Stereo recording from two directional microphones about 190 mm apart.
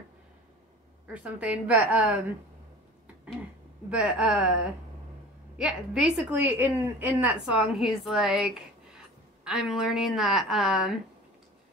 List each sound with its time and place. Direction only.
1.0 s a woman's voice: 5° right (ahead or behind)
3.9 s a woman's voice: 5° right (ahead or behind)